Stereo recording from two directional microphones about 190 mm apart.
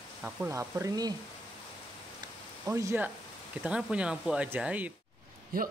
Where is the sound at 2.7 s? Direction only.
15° right (ahead or behind).